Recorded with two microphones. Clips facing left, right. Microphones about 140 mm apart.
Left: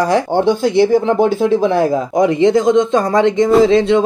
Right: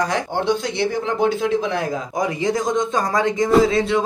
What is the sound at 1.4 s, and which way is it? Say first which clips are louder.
Speech: left 8 dB; 30° left (ahead or behind).